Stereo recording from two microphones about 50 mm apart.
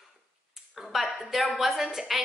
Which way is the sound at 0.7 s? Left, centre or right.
Centre.